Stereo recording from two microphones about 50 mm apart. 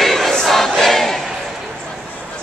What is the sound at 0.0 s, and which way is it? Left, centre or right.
Choir, centre.